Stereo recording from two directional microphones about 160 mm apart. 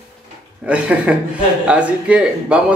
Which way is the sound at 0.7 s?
5° right (ahead or behind).